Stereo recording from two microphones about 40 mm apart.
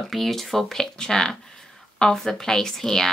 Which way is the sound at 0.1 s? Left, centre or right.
Centre.